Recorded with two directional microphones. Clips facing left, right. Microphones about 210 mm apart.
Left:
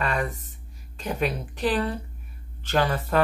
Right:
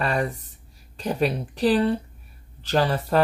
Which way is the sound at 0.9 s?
35° right (ahead or behind).